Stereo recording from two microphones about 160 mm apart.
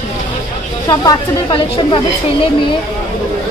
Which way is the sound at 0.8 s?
25° left (ahead or behind).